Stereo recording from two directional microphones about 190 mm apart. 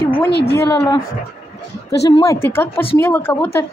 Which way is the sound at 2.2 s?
15° left (ahead or behind).